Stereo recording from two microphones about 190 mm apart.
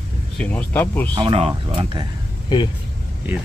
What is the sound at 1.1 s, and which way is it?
Speech, 25° right (ahead or behind).